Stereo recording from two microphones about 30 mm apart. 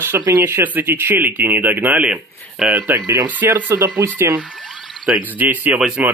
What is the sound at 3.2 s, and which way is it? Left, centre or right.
Speech, right.